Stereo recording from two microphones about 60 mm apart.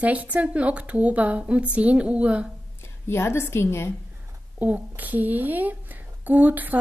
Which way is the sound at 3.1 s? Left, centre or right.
Left.